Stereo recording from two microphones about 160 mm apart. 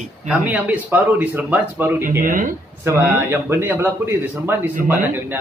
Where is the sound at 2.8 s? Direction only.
15° right (ahead or behind).